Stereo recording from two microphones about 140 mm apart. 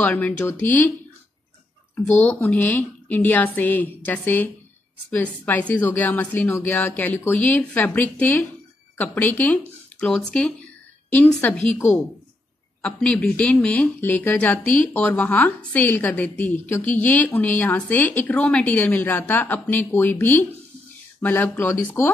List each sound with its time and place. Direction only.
0.0 s speech: 10° left (ahead or behind)
2.2 s a woman's voice: 10° left (ahead or behind)
12.8 s speech: 10° left (ahead or behind)